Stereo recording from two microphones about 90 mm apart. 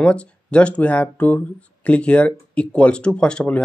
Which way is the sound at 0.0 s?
10° left (ahead or behind).